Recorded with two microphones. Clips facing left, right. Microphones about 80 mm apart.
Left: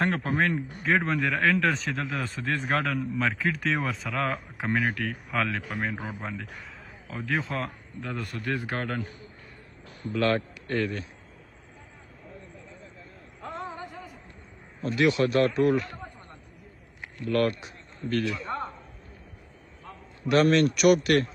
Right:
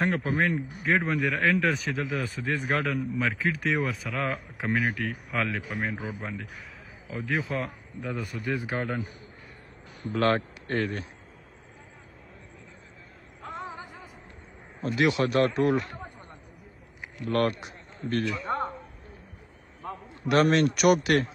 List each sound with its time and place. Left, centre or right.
0.0 s speech: centre
10.1 s speech: right
13.5 s a sound: centre
15.0 s speech: right
17.3 s speech: right
18.4 s a sound: right
19.8 s a man's voice: right